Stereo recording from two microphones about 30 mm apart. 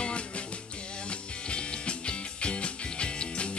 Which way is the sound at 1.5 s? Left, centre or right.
Left.